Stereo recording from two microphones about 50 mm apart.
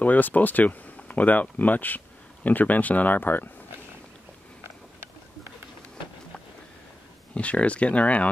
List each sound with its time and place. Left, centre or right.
0.0 s speech: left
7.3 s speech: left